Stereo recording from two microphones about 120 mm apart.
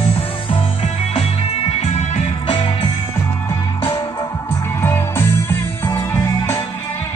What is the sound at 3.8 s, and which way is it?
Music, 40° left (ahead or behind).